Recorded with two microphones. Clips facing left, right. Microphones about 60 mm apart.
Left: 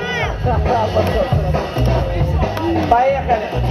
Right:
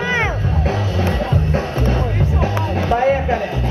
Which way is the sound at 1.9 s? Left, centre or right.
Centre.